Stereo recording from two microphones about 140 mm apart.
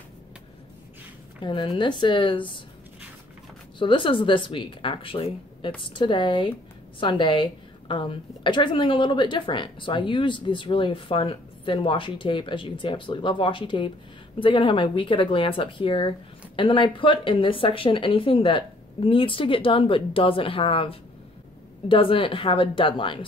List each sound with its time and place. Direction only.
1.4 s speech: 35° left (ahead or behind)
3.8 s speech: 35° left (ahead or behind)